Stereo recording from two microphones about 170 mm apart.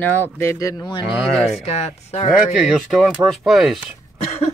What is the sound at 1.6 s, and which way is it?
Speech, 40° left (ahead or behind).